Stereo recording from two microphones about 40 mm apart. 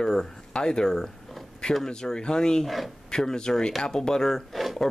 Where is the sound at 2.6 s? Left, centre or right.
Centre.